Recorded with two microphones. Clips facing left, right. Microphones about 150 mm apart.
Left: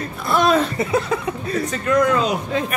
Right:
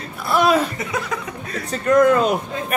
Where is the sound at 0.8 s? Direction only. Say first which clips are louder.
Left 5 dB; 30° left (ahead or behind).